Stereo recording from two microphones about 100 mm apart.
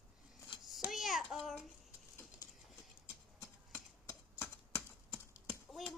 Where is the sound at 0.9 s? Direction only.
Centre (ahead or behind).